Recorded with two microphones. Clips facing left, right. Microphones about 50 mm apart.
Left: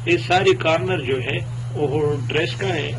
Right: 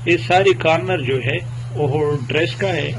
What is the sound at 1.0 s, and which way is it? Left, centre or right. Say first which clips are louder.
Speech: right 2 dB; centre.